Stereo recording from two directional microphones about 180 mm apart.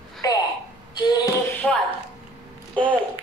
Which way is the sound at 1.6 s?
5° left (ahead or behind).